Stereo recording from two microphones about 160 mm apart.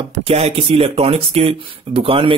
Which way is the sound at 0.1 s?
40° right (ahead or behind).